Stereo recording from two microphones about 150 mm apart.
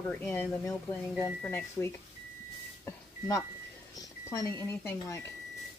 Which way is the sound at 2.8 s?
20° left (ahead or behind).